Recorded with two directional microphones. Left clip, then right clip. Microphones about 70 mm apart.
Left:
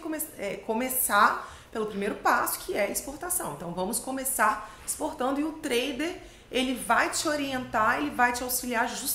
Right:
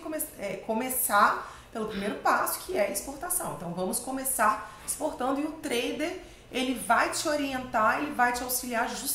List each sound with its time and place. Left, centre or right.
0.1 s a woman's voice: left